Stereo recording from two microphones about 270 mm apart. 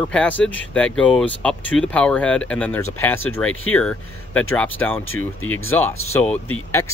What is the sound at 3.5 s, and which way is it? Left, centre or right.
Speech, left.